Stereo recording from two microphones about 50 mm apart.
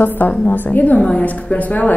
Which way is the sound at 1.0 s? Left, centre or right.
Centre.